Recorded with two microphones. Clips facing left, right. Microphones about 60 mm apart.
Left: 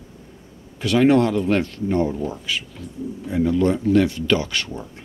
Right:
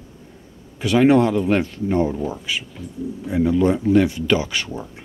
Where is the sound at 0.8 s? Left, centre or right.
Centre.